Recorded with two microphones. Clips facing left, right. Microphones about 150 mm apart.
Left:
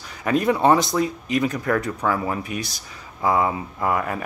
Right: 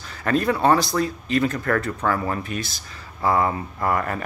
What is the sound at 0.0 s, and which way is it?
Speech, 10° left (ahead or behind).